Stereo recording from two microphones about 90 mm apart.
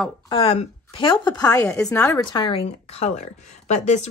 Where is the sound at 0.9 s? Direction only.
65° left (ahead or behind); by 1.6 s 45° left (ahead or behind).